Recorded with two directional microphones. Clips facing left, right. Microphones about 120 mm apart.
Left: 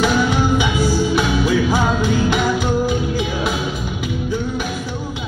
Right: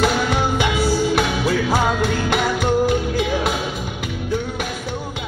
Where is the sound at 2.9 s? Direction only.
60° right (ahead or behind).